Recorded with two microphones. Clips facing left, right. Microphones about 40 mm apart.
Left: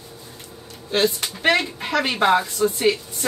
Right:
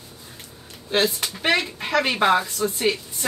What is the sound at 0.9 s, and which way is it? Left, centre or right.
Speech, centre.